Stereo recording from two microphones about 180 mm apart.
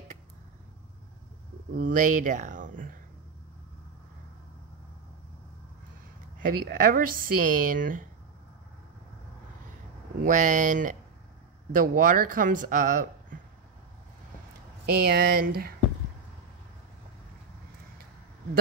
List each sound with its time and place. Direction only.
1.8 s speech: 45° right (ahead or behind)
6.4 s speech: 50° right (ahead or behind)
10.2 s speech: 45° right (ahead or behind)
14.9 s speech: 60° right (ahead or behind)